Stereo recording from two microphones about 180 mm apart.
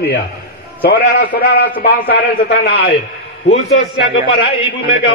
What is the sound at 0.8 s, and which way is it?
A man's voice, 50° left (ahead or behind).